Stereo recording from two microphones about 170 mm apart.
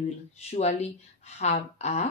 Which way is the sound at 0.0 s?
40° left (ahead or behind).